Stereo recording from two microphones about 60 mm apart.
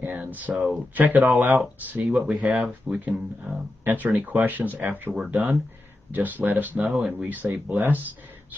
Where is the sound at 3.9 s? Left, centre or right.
Right.